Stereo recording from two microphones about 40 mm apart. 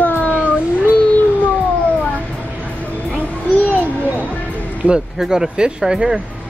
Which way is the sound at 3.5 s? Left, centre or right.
Left.